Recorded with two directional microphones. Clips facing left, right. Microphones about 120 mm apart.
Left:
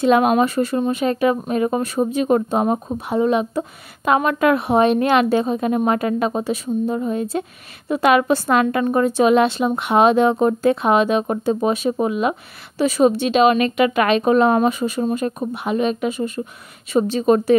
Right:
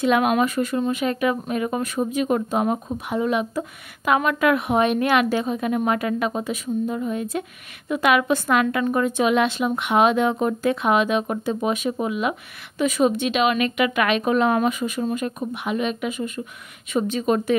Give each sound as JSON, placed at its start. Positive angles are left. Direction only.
{"t": 0.0, "sound": "a woman's voice", "side_deg": 35}